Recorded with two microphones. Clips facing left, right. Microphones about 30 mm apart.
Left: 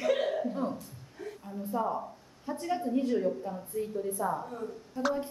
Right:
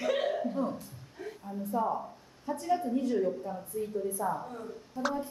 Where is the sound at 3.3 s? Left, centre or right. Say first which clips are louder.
Left 1 dB; centre.